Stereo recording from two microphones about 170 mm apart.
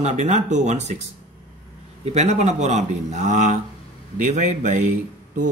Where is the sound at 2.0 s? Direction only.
40° right (ahead or behind).